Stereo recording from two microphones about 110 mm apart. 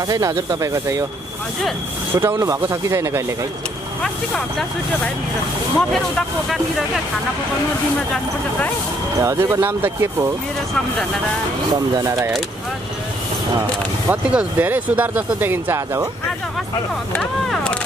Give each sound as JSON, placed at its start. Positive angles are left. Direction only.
{"t": 0.1, "sound": "speech", "side_deg": -35}
{"t": 2.1, "sound": "speech", "side_deg": -25}
{"t": 5.8, "sound": "speech", "side_deg": 0}
{"t": 9.2, "sound": "speech", "side_deg": -25}
{"t": 11.7, "sound": "speech", "side_deg": -35}
{"t": 14.3, "sound": "speech", "side_deg": -15}
{"t": 17.1, "sound": "speech", "side_deg": 10}